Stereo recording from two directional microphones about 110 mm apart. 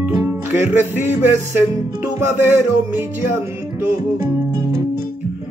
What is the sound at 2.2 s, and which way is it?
Music, 20° right (ahead or behind).